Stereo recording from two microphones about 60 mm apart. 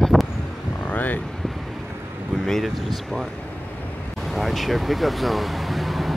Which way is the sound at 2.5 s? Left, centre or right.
Centre.